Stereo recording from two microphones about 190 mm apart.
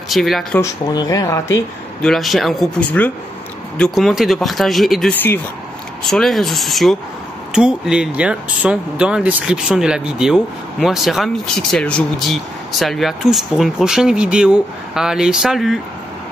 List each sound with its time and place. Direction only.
0.1 s speech: centre (ahead or behind)
0.6 s speech: 20° left (ahead or behind)
2.0 s speech: centre (ahead or behind)